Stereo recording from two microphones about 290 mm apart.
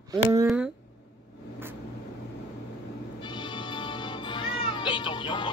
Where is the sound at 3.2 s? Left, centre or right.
Centre.